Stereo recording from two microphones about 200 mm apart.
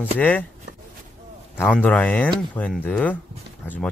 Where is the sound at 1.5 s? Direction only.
10° left (ahead or behind).